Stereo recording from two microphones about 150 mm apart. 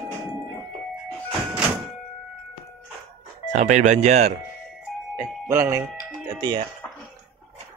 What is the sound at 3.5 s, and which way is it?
Speech, 50° right (ahead or behind).